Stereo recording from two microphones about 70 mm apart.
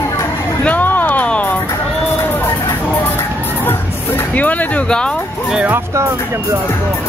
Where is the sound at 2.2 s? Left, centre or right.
Left.